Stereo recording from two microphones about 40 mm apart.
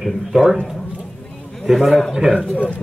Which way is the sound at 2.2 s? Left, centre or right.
Centre.